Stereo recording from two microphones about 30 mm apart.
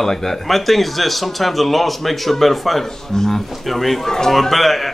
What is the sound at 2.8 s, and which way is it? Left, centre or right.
A man's voice, centre.